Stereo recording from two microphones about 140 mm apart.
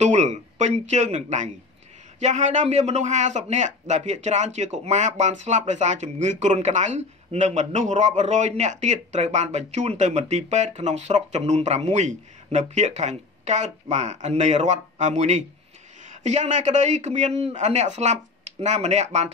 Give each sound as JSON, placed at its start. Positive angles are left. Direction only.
{"t": 0.0, "sound": "a man's voice", "side_deg": -55}